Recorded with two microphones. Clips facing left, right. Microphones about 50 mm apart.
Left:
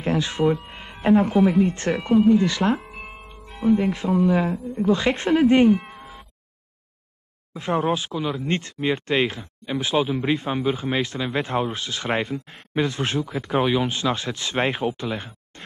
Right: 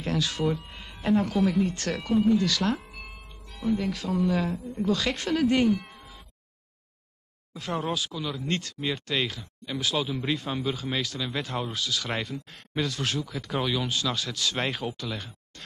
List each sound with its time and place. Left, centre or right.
0.0 s speech: left
7.5 s speech: left